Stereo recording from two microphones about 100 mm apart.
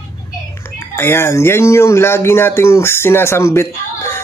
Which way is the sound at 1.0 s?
25° left (ahead or behind).